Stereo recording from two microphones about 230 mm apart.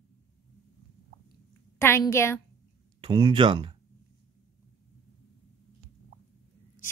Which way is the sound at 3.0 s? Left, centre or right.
Centre.